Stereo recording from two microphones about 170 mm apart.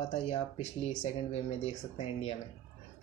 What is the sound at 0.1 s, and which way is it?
Speech, 40° left (ahead or behind).